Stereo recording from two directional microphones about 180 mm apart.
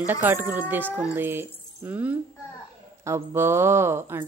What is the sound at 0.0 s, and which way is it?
Speech, 10° right (ahead or behind).